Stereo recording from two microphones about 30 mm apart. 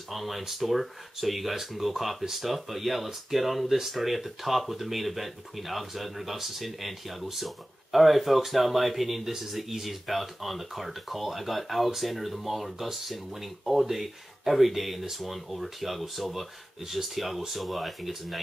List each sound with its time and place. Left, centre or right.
0.1 s speech: centre